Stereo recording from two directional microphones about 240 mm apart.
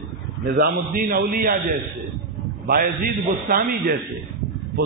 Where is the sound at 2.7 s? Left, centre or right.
Right.